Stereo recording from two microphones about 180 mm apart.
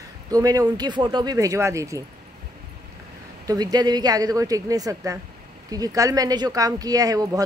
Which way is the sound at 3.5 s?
20° right (ahead or behind).